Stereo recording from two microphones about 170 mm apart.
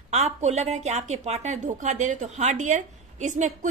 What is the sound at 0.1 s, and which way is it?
A woman's voice, 40° right (ahead or behind).